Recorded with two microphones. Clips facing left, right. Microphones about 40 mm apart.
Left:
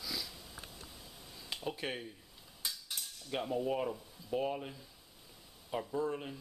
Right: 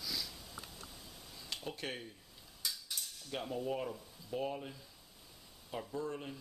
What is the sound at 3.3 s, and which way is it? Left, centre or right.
Speech, centre.